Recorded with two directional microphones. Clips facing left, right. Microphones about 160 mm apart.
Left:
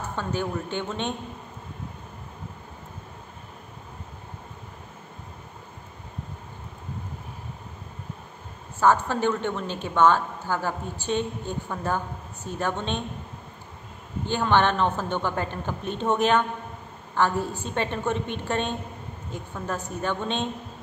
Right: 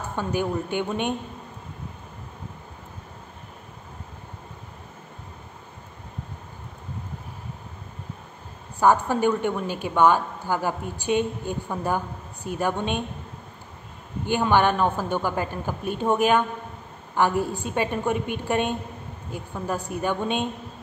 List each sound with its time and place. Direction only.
0.1 s a woman's voice: 10° right (ahead or behind)
8.7 s a woman's voice: 15° right (ahead or behind)
14.2 s a woman's voice: 10° right (ahead or behind)